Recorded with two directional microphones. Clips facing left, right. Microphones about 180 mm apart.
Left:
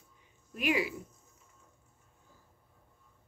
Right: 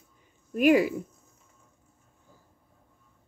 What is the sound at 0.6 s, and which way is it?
Speech, 45° right (ahead or behind).